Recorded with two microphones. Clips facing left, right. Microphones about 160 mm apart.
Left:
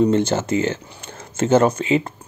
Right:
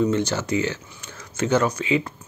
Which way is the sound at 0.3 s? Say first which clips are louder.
Left 4 dB; 50° left (ahead or behind).